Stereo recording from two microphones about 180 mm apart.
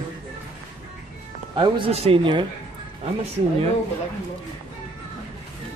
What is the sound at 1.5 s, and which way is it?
Speech, 30° right (ahead or behind).